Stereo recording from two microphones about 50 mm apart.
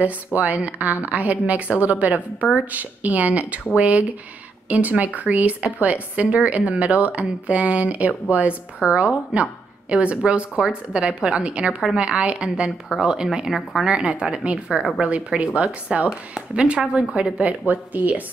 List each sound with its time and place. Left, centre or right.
0.4 s speech: right; by 13.5 s centre
13.5 s speech: centre
13.8 s speech: centre; by 18.2 s right